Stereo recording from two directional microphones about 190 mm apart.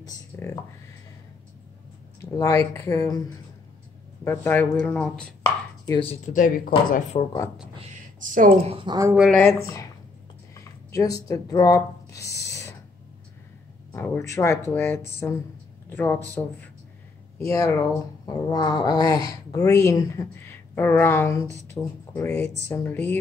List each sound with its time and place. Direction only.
0.0 s speech: 15° left (ahead or behind)
2.3 s speech: 15° left (ahead or behind)
5.9 s speech: 25° left (ahead or behind)
6.2 s speech: 45° left (ahead or behind)
7.1 s speech: 30° left (ahead or behind)
7.8 s a woman's voice: 40° right (ahead or behind); by 9.1 s 20° right (ahead or behind)
9.6 s speech: 15° left (ahead or behind)
10.5 s a sound: 20° left (ahead or behind)
13.9 s speech: 10° left (ahead or behind)
17.5 s speech: 15° left (ahead or behind)